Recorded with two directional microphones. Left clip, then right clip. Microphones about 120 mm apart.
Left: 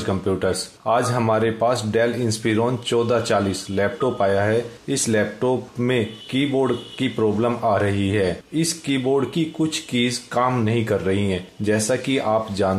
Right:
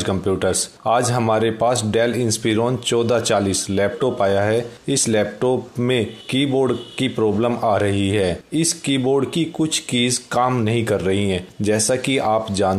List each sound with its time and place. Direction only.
0.0 s speech: 40° right (ahead or behind)